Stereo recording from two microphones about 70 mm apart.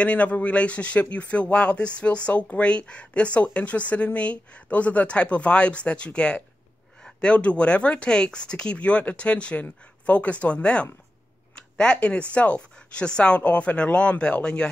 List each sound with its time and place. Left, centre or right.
0.0 s speech: centre